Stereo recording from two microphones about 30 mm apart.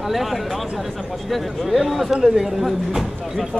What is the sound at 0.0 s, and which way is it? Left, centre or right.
A man's voice, centre.